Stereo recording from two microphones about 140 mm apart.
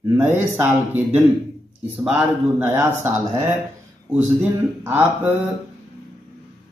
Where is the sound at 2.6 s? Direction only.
15° right (ahead or behind).